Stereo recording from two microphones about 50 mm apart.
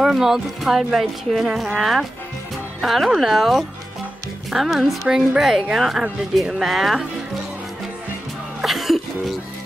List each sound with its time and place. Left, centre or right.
0.0 s a woman's voice: centre
5.0 s a woman's voice: centre
5.4 s speech: centre
8.5 s music: centre